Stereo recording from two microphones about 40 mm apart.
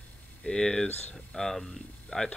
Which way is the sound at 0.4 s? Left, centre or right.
Centre.